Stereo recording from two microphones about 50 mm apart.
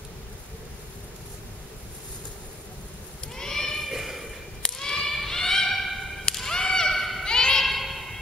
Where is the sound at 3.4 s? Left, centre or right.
Centre.